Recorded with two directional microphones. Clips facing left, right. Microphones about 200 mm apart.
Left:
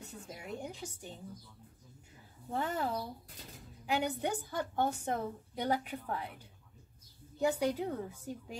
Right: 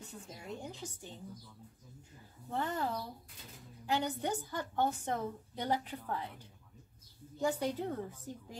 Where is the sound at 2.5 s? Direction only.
10° left (ahead or behind).